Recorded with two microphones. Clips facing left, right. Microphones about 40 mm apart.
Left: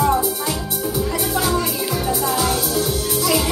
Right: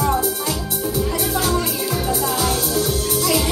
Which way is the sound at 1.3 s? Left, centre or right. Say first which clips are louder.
Left 1 dB; centre.